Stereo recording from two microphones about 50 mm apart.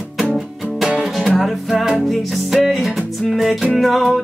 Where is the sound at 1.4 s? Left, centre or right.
Centre.